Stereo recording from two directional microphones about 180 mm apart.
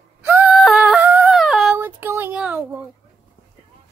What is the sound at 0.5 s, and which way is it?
Yodeling, centre (ahead or behind).